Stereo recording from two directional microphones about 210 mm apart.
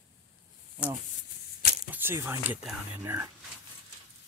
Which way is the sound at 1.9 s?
10° right (ahead or behind).